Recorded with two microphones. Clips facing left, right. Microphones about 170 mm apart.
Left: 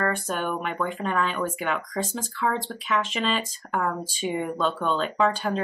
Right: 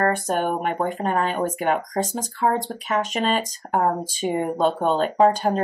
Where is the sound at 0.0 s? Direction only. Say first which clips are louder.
Right 5 dB; 45° right (ahead or behind).